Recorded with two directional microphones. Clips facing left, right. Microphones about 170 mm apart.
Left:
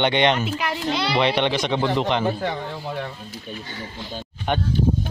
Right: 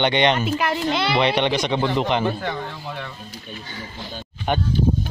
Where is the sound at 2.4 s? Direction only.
35° left (ahead or behind).